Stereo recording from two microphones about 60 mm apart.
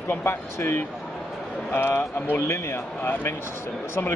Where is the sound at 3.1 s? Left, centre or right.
Left.